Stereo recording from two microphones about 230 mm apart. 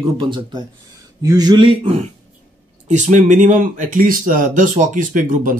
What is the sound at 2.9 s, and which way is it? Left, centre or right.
Speech, right.